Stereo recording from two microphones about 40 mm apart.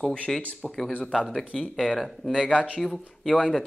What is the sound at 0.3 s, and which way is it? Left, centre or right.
Speech, centre.